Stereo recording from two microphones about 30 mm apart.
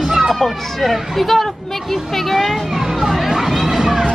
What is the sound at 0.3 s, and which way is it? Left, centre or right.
A child's voice, centre.